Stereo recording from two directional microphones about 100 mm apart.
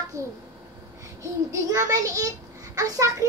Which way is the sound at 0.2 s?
30° right (ahead or behind).